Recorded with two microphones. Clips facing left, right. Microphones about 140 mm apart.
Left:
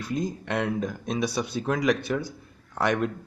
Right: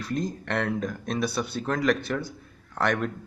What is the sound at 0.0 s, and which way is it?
Speech, 5° left (ahead or behind).